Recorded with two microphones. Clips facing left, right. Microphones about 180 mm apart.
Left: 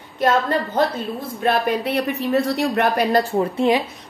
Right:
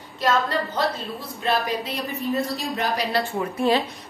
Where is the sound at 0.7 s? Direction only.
55° left (ahead or behind).